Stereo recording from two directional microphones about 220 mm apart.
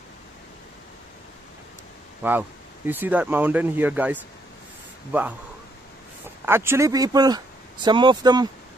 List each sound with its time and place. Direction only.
2.2 s speech: 10° right (ahead or behind)
6.4 s speech: 10° right (ahead or behind)